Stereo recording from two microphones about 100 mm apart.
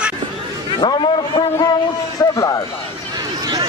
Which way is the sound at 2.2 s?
35° left (ahead or behind).